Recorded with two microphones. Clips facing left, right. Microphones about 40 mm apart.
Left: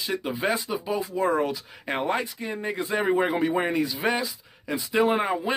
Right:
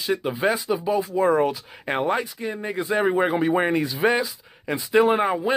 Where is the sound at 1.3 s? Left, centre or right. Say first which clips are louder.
Right 4 dB; right.